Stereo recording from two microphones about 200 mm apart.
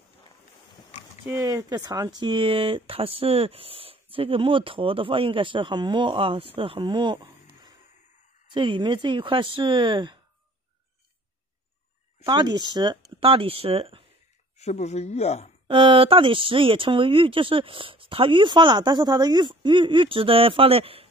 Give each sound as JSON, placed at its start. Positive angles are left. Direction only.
{"t": 1.2, "sound": "speech", "side_deg": -15}
{"t": 8.5, "sound": "speech", "side_deg": -25}
{"t": 12.3, "sound": "speech", "side_deg": -20}
{"t": 14.6, "sound": "speech", "side_deg": 35}
{"t": 15.7, "sound": "speech", "side_deg": -25}